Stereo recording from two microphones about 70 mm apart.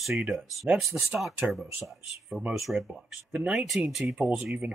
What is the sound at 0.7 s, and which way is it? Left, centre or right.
Speech, centre.